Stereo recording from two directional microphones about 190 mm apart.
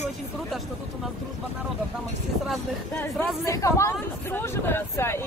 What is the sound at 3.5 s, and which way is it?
Speech, 15° left (ahead or behind).